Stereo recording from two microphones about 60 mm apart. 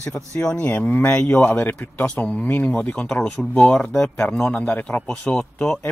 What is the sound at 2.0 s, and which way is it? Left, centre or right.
Speech, centre.